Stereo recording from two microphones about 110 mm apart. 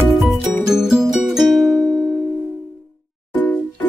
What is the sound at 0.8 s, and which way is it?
Music, 5° right (ahead or behind).